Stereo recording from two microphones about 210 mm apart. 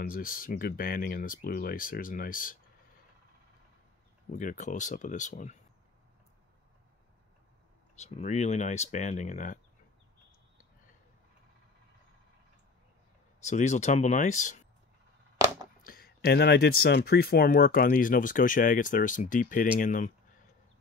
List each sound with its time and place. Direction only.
0.0 s speech: 45° left (ahead or behind)
4.3 s speech: 35° left (ahead or behind)
7.9 s speech: 30° left (ahead or behind)
13.4 s speech: 35° left (ahead or behind)
15.8 s speech: 45° left (ahead or behind)